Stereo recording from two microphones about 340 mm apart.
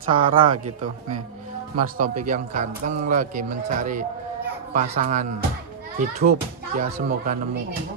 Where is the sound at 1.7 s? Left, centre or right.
Right.